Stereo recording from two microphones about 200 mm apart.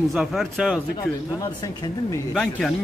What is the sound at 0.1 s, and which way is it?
Speech, centre (ahead or behind).